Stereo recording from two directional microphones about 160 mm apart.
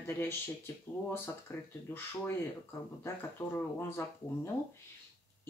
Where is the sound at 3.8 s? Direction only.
15° left (ahead or behind).